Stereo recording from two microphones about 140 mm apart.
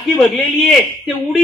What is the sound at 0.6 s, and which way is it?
Speech, 5° right (ahead or behind).